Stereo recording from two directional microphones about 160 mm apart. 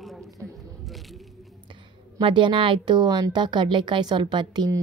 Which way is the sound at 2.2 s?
30° right (ahead or behind).